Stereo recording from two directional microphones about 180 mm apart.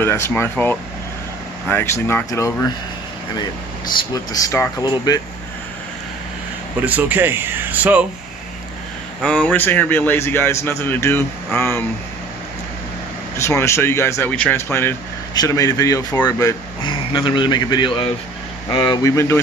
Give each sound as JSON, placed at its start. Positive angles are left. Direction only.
{"t": 0.0, "sound": "speech", "side_deg": 15}
{"t": 4.1, "sound": "speech", "side_deg": 20}
{"t": 6.8, "sound": "speech", "side_deg": -10}
{"t": 9.2, "sound": "speech", "side_deg": 5}
{"t": 13.4, "sound": "speech", "side_deg": 15}